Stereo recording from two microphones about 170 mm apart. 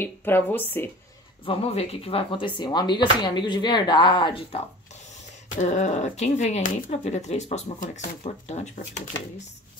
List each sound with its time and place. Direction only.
0.0 s speech: 10° left (ahead or behind)
1.4 s speech: 35° left (ahead or behind)